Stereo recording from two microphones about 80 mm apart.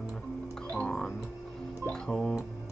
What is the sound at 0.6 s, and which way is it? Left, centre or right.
Music, centre.